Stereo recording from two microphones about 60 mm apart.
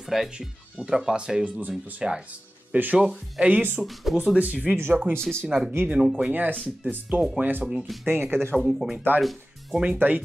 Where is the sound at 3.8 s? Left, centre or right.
Centre.